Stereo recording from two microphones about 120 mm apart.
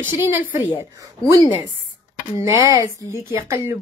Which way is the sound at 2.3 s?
25° right (ahead or behind).